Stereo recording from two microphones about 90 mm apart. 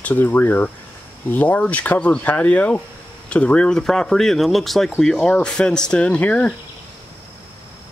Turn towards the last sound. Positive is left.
turn(degrees=15)  # may be behind; listen again after turning